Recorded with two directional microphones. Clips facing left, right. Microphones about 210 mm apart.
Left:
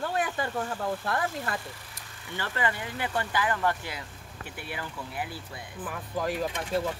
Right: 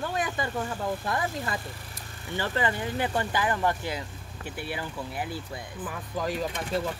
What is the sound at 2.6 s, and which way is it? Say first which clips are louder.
Speech: right 3 dB; 35° right (ahead or behind).